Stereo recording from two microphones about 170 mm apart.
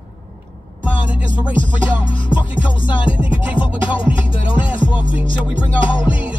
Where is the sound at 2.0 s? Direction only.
30° left (ahead or behind).